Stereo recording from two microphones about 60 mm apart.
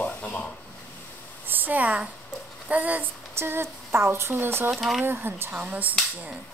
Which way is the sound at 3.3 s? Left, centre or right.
Right.